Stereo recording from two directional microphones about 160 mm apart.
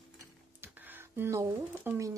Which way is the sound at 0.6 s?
10° right (ahead or behind).